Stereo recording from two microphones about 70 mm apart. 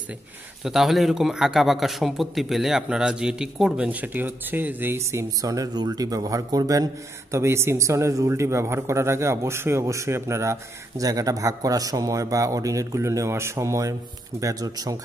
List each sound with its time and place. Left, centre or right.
0.7 s a man's voice: centre
3.7 s speech: right
5.4 s a man's voice: right
11.0 s a man's voice: right
14.4 s speech: right